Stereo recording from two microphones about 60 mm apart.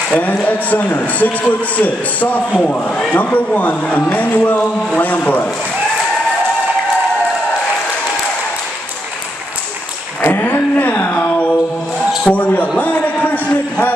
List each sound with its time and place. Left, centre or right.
0.4 s speech: left
10.2 s a sound: left
12.3 s a man's voice: left